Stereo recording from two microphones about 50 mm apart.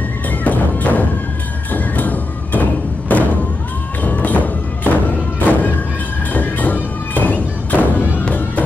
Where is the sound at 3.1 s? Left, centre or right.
Left.